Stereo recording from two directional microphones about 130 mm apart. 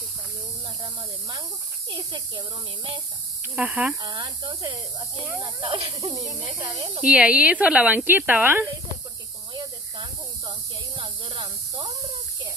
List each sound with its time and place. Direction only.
1.9 s speech: 35° right (ahead or behind)
3.5 s speech: 10° right (ahead or behind)
4.0 s speech: 35° right (ahead or behind)
5.6 s speech: 45° right (ahead or behind)
7.0 s speech: 10° right (ahead or behind)
9.5 s snake: 35° right (ahead or behind)
11.0 s speech: 45° right (ahead or behind)